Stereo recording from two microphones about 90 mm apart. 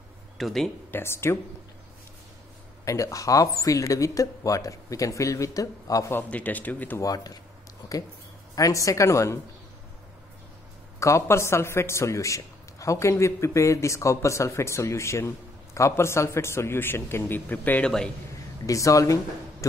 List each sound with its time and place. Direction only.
0.4 s speech: centre (ahead or behind)
0.9 s a man's voice: 30° left (ahead or behind)
2.8 s a man's voice: 35° left (ahead or behind)
6.1 s speech: 15° left (ahead or behind)
7.0 s a man's voice: 40° left (ahead or behind)
8.5 s a man's voice: 40° left (ahead or behind)
11.0 s a man's voice: 35° left (ahead or behind)
18.7 s a man's voice: 40° left (ahead or behind)